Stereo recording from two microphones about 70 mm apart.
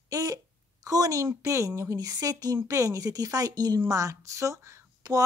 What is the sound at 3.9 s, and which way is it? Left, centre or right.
Speech, right.